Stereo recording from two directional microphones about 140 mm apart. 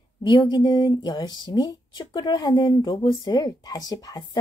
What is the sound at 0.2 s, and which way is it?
Speech, 35° left (ahead or behind).